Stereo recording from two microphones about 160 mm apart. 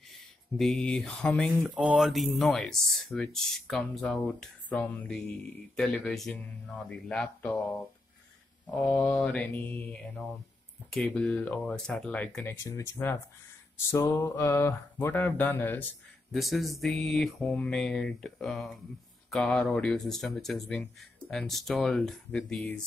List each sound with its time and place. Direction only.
0.1 s speech: centre (ahead or behind)
1.7 s speech: 5° right (ahead or behind); by 7.8 s 10° left (ahead or behind)
8.6 s mantra: 10° left (ahead or behind)
10.9 s speech: 5° left (ahead or behind)
12.6 s mantra: 20° left (ahead or behind)
16.3 s speech: centre (ahead or behind)